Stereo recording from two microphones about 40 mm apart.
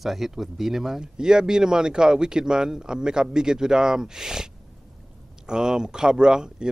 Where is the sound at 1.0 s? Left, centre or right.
Centre.